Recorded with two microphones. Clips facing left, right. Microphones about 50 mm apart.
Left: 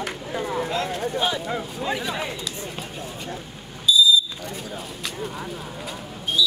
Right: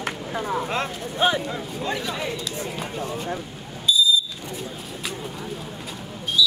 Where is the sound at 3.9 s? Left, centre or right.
Right.